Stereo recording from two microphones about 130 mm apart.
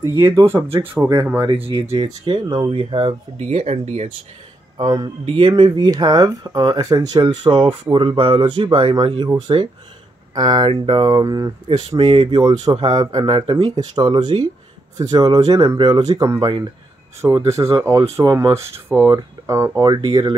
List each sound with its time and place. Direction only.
0.0 s speech: 25° right (ahead or behind)
1.4 s speech: 35° right (ahead or behind)
2.7 s speech: 45° right (ahead or behind)
4.7 s speech: 35° right (ahead or behind)
10.3 s speech: 35° right (ahead or behind)